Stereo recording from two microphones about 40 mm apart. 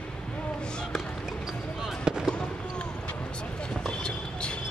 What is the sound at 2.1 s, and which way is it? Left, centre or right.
Fireworks, right.